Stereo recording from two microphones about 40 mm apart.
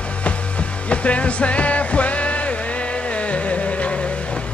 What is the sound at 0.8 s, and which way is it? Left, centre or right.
Music, left.